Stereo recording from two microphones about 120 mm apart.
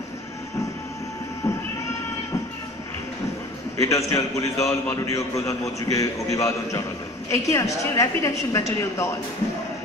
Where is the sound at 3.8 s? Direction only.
25° left (ahead or behind).